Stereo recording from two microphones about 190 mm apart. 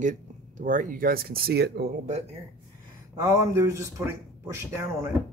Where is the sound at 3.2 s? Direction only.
15° right (ahead or behind).